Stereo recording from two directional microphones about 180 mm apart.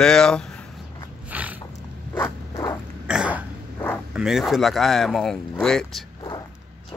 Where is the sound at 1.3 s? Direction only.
10° right (ahead or behind).